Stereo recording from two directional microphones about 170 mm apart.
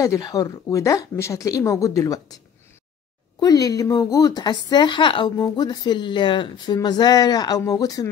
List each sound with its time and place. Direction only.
0.0 s speech: 20° left (ahead or behind)